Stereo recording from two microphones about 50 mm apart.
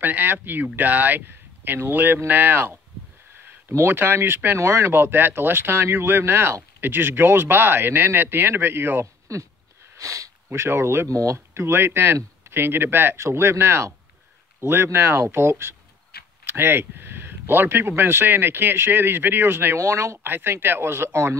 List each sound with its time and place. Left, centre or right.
0.0 s speech: right
3.9 s speech: right
4.6 s speech: right
4.9 s speech: right
9.3 s a sound: right
10.0 s speech: right
13.2 s speech: right
19.8 s speech: right
20.2 s speech: right